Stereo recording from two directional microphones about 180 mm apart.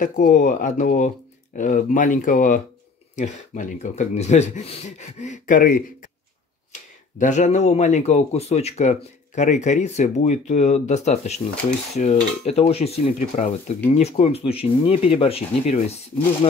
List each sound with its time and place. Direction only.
0.0 s speech: 45° left (ahead or behind)